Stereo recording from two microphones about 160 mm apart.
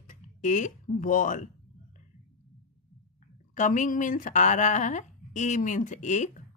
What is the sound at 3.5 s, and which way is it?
Speech, 50° left (ahead or behind).